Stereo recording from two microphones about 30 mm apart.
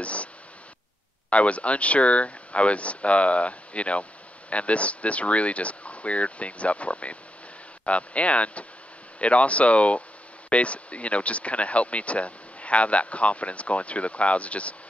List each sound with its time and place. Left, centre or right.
0.0 s speech: left
1.3 s speech: left